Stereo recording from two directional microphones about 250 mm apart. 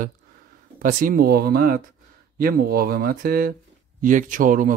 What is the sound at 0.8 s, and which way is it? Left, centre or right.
Speech, right.